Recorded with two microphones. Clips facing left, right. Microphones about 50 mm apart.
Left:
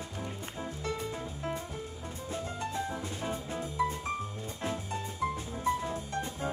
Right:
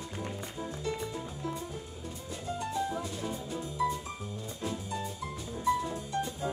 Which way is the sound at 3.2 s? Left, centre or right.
Left.